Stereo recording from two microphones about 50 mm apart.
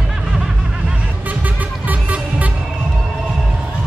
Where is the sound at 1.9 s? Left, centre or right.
Right.